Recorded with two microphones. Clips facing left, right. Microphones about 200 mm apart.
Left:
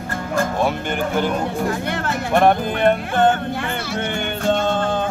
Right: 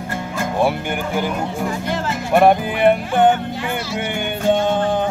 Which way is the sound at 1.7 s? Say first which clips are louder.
Even; 60° left (ahead or behind).